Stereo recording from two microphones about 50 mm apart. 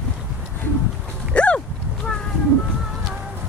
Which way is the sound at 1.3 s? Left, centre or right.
Left.